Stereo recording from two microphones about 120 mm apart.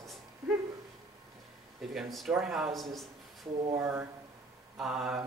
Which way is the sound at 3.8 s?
20° right (ahead or behind).